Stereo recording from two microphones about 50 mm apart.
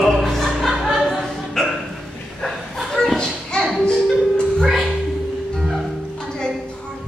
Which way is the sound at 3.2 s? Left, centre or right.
Centre.